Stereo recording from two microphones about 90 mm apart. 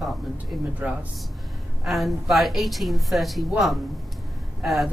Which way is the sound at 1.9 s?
Centre (ahead or behind).